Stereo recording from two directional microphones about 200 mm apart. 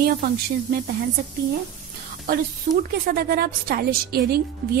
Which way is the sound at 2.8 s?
45° right (ahead or behind).